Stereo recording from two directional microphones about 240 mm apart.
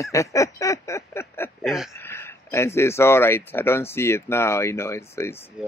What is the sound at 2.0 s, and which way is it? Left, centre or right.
Speech, centre.